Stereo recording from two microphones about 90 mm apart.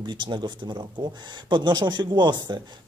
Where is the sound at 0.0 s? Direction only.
60° right (ahead or behind).